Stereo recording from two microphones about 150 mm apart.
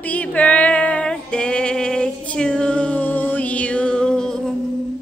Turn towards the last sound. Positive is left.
turn(degrees=5)  # may be behind; listen again after turning